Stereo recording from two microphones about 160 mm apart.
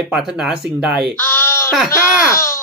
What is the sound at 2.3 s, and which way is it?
Speech, 15° left (ahead or behind).